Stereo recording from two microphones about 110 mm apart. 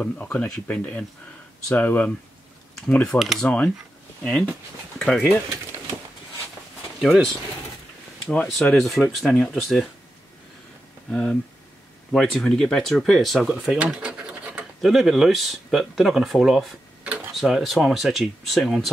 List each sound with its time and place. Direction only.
0.0 s speech: 15° left (ahead or behind)
3.2 s speech: centre (ahead or behind)
3.4 s speech: 10° left (ahead or behind)
7.0 s speech: centre (ahead or behind)
8.7 s speech: centre (ahead or behind)
11.1 s speech: 5° left (ahead or behind)